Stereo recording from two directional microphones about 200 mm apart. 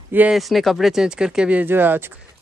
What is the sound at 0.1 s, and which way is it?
Speech, 5° right (ahead or behind).